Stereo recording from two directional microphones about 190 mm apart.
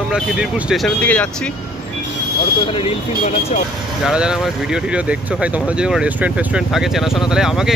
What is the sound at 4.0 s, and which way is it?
Speech, 5° right (ahead or behind).